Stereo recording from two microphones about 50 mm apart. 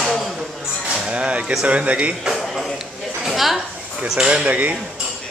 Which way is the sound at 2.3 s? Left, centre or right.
Centre.